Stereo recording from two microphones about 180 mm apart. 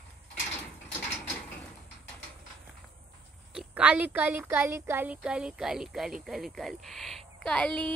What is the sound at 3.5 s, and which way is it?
Speech, 5° right (ahead or behind).